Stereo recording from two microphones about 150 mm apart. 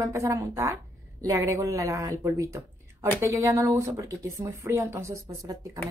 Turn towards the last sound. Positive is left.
turn(degrees=-25)  # may be behind; listen again after turning